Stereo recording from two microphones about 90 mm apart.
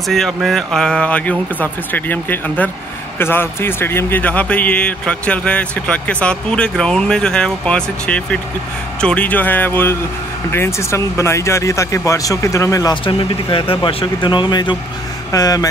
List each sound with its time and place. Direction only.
0.1 s a man's voice: centre (ahead or behind); by 12.9 s 40° left (ahead or behind)
12.9 s speech: 75° left (ahead or behind)
13.8 s speech: 65° left (ahead or behind)
15.3 s speech: 40° left (ahead or behind)